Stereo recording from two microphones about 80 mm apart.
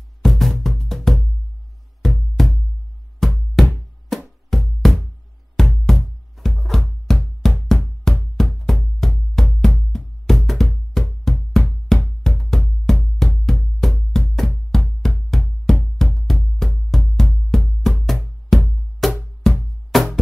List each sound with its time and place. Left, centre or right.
0.2 s music: centre